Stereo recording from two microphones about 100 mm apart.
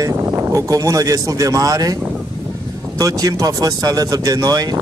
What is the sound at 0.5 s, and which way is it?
Speech, 35° right (ahead or behind).